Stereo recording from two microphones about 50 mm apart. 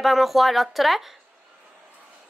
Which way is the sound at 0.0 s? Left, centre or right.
Centre.